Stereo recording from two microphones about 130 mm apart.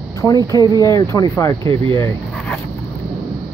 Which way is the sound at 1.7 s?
45° right (ahead or behind).